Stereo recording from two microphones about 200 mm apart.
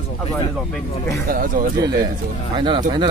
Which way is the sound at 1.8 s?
20° right (ahead or behind).